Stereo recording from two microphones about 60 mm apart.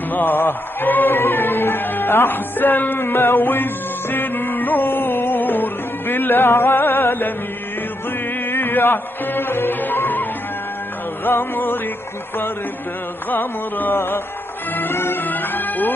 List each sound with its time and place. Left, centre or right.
0.1 s music: left
8.5 s music: left
11.2 s music: left
13.3 s music: left